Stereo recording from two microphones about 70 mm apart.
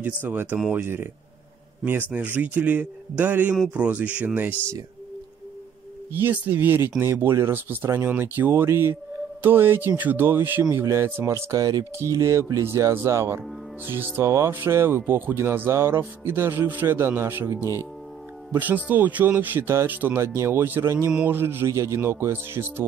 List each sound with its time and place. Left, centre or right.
0.0 s speech: right
6.2 s speech: right
10.6 s speech: right
13.8 s speech: right
14.2 s speech: right